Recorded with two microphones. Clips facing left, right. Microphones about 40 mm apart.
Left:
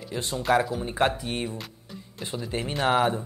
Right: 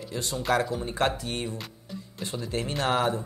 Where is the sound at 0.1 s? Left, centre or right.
Left.